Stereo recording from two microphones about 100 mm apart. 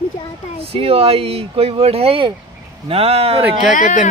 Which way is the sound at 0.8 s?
75° right (ahead or behind).